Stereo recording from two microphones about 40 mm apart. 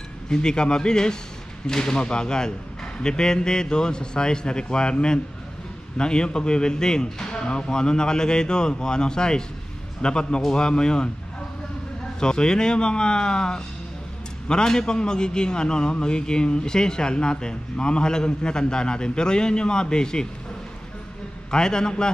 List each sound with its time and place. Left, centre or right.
0.3 s a man's voice: centre
12.2 s a man's voice: centre
21.5 s a man's voice: centre